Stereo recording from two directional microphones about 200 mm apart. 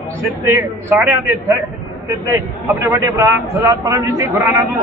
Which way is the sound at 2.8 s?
15° right (ahead or behind).